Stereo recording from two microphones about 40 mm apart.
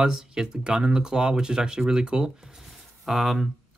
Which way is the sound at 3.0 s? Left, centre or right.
Centre.